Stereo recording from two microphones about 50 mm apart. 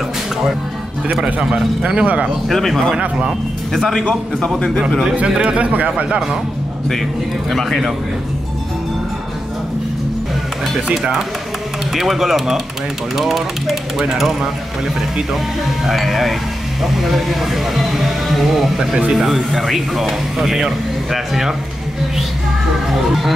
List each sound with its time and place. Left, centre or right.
1.2 s a man's voice: centre
2.4 s speech: centre
3.0 s a man's voice: centre
3.7 s a man's voice: centre
5.1 s a man's voice: right
7.5 s speech: centre
11.0 s speech: centre
15.8 s speech: centre